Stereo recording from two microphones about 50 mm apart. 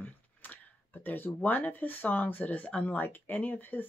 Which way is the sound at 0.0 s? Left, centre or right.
Left.